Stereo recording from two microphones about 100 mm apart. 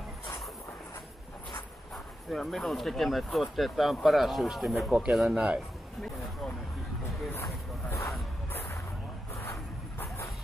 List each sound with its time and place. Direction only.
2.3 s speech: centre (ahead or behind)
7.3 s a sound: 30° left (ahead or behind)
9.9 s vehicle: 25° left (ahead or behind)